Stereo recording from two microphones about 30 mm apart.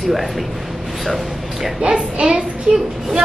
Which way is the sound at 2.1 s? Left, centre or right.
Right.